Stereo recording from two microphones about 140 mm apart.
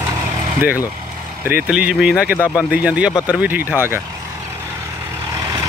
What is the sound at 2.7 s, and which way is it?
Speech, 10° right (ahead or behind).